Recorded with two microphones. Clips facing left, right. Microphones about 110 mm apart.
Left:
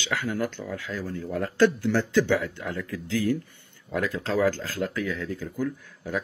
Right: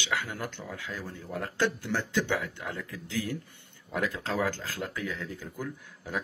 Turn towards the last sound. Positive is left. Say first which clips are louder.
# left 4 dB
turn(degrees=-15)  # may be behind; listen again after turning